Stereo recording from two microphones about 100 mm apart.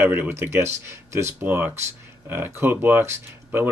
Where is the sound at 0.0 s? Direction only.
25° right (ahead or behind).